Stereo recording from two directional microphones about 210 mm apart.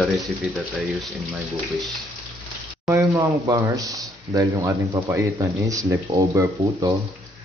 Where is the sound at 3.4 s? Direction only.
15° right (ahead or behind).